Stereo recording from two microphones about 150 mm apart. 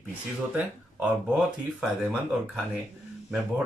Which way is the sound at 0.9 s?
5° right (ahead or behind).